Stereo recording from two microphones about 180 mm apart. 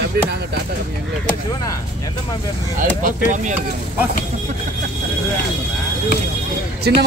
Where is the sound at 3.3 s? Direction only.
45° right (ahead or behind).